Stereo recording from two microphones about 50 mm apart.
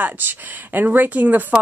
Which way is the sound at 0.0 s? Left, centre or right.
Right.